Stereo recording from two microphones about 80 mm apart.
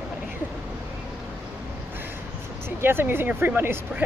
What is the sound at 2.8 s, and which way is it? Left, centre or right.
Speech, right.